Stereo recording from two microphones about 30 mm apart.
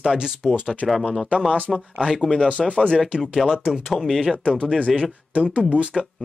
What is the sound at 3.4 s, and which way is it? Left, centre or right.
Speech, right.